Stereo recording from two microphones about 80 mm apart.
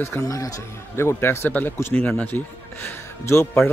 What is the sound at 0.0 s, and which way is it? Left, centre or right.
Speech, left.